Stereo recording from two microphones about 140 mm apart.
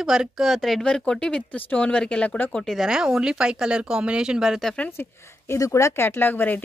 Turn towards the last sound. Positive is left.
turn(degrees=15)  # may be behind; listen again after turning